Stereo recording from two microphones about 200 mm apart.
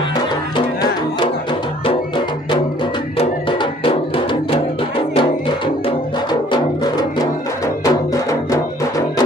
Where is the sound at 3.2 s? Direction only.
25° left (ahead or behind).